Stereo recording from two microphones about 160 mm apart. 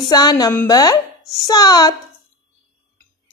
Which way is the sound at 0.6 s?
25° left (ahead or behind).